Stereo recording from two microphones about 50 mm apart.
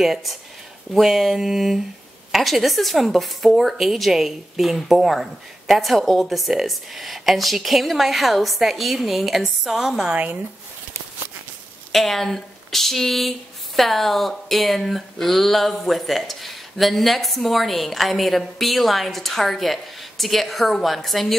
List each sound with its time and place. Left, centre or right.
0.0 s a woman's voice: centre
10.1 s speech: right
11.9 s a woman's voice: centre